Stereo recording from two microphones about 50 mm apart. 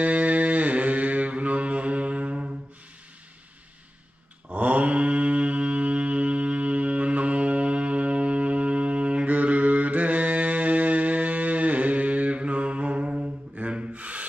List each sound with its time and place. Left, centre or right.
0.0 s music: right
4.5 s mantra: right